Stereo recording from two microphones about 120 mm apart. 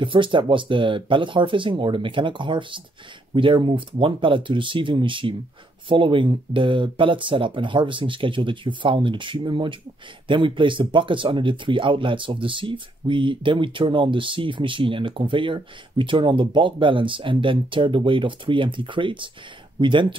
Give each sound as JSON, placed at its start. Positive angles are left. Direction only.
{"t": 0.0, "sound": "speech", "side_deg": -45}